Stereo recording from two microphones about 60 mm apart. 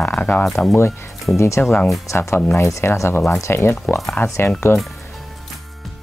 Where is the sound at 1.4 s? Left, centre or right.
Left.